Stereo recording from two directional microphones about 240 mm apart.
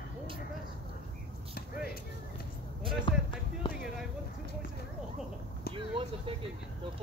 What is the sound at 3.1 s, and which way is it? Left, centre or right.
Speech, left.